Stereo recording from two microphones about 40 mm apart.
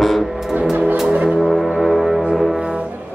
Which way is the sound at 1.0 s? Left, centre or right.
Right.